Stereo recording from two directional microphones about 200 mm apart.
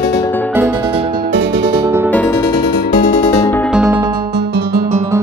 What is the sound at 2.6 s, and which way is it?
Music, 55° left (ahead or behind).